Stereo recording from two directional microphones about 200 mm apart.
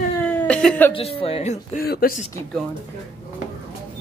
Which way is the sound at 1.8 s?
50° left (ahead or behind).